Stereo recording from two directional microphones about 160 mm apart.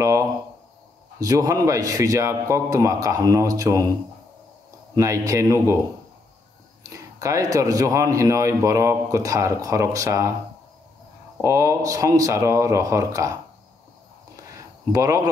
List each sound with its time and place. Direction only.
0.0 s speech: 20° right (ahead or behind)
4.9 s speech: 20° right (ahead or behind)
6.9 s speech: 20° right (ahead or behind)
11.4 s speech: 20° right (ahead or behind)
14.9 s speech: 20° right (ahead or behind)